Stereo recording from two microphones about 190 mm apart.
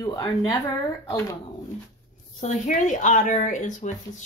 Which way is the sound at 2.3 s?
40° left (ahead or behind).